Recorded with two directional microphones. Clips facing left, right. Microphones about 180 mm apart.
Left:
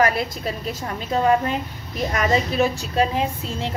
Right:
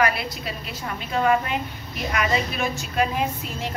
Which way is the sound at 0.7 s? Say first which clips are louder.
Left 5 dB; 35° left (ahead or behind).